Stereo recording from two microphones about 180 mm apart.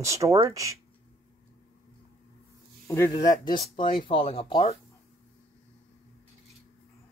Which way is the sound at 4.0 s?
30° left (ahead or behind).